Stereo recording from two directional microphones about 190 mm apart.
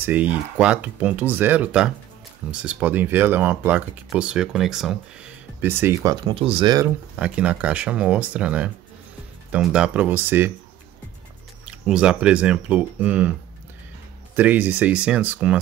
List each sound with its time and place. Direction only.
0.0 s speech: 10° right (ahead or behind)
6.2 s speech: 30° right (ahead or behind)
7.2 s speech: 5° right (ahead or behind)
11.6 s speech: 5° right (ahead or behind)